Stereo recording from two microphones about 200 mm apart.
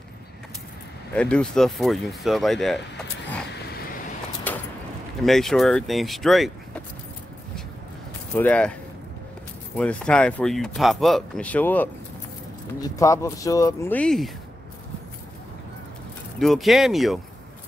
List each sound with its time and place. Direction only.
1.1 s speech: 5° left (ahead or behind)
4.5 s a sound: 10° left (ahead or behind)
5.2 s speech: centre (ahead or behind)
8.4 s speech: 5° left (ahead or behind)
9.8 s speech: 5° left (ahead or behind)
16.3 s speech: centre (ahead or behind)